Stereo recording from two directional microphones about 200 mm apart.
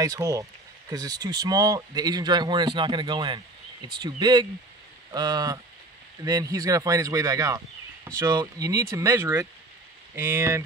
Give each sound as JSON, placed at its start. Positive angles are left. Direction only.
{"t": 0.0, "sound": "speech", "side_deg": -15}